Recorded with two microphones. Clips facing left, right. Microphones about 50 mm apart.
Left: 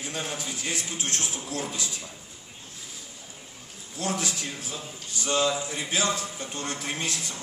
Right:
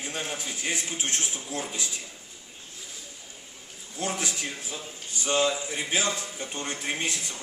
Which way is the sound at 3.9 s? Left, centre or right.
Centre.